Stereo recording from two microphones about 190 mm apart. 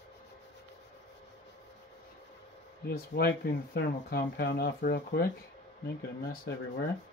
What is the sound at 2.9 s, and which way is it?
Speech, 55° left (ahead or behind).